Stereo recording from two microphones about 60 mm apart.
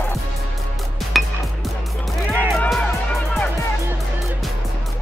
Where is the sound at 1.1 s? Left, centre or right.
Centre.